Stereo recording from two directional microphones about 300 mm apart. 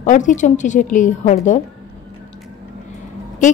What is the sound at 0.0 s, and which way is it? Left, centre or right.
A woman's voice, left.